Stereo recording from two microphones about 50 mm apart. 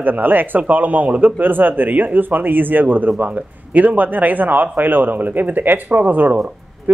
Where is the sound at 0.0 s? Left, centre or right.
Right.